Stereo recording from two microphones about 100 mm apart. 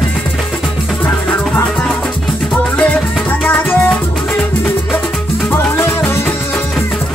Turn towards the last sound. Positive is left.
turn(degrees=25)  # may be behind; listen again after turning